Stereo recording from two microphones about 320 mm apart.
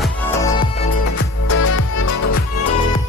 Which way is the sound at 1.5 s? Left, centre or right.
Left.